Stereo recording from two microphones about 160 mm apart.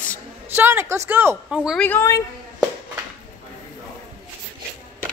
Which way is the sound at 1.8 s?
10° left (ahead or behind).